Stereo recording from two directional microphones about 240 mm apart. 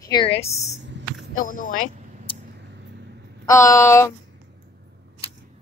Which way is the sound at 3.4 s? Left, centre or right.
Centre.